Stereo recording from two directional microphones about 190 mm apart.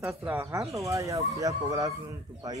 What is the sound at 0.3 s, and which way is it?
Speech, 15° right (ahead or behind).